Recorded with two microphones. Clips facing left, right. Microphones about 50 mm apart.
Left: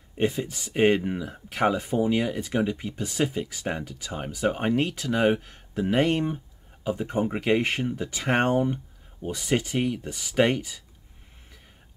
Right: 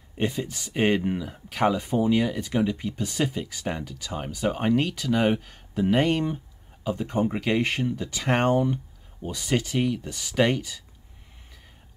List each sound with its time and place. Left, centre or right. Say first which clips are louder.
0.2 s speech: left 2 dB; centre